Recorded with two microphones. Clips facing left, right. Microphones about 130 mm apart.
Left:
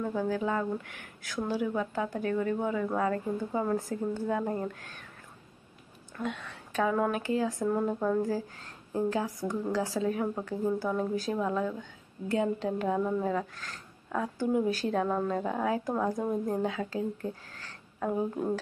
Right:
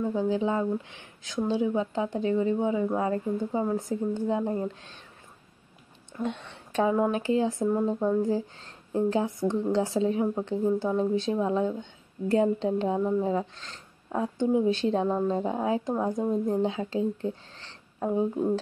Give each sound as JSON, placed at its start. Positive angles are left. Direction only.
{"t": 0.0, "sound": "a woman's voice", "side_deg": -20}
{"t": 6.2, "sound": "a woman's voice", "side_deg": -30}